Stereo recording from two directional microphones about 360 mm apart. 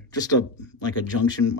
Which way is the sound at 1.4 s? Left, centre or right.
Left.